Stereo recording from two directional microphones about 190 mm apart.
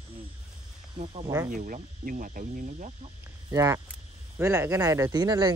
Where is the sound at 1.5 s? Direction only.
45° right (ahead or behind).